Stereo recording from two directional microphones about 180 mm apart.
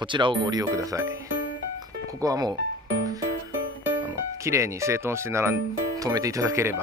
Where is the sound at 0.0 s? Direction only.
25° right (ahead or behind).